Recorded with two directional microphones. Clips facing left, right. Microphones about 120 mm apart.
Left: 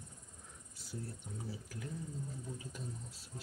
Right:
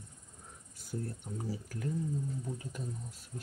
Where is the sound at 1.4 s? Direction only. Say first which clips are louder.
Right 8 dB; 50° right (ahead or behind).